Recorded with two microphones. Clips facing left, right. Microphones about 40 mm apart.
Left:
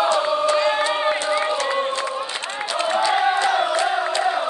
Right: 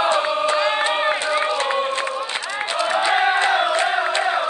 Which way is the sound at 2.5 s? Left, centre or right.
Right.